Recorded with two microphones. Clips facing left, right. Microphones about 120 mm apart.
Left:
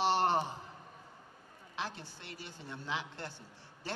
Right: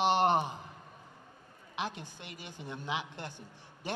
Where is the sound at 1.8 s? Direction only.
15° right (ahead or behind).